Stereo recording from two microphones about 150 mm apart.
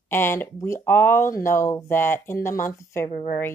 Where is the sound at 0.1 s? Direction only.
15° left (ahead or behind).